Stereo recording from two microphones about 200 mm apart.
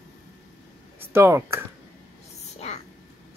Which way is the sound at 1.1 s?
15° right (ahead or behind).